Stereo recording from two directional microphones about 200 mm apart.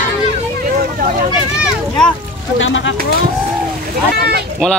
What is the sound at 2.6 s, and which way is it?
Speech, 70° left (ahead or behind).